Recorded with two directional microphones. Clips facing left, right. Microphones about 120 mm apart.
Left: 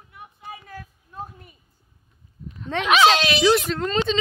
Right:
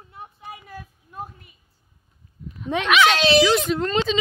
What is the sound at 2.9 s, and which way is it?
Speech, 30° left (ahead or behind).